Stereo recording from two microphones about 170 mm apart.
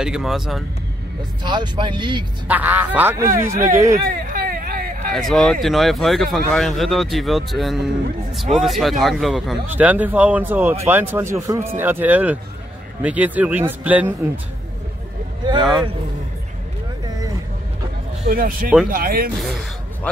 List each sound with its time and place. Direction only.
0.0 s speech: 5° right (ahead or behind)
1.4 s speech: 25° right (ahead or behind)
2.4 s speech: 10° right (ahead or behind)
4.1 s hubbub: 55° right (ahead or behind)
5.3 s speech: 5° left (ahead or behind)
18.3 s speech: 55° right (ahead or behind)